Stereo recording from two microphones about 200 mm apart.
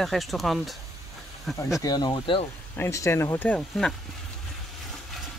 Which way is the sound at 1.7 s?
20° left (ahead or behind).